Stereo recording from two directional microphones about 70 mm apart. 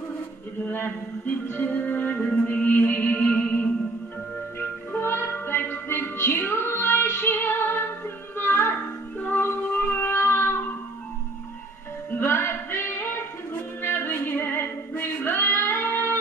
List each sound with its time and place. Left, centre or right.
0.6 s music: left
4.6 s music: left
10.1 s cat: left
12.1 s music: left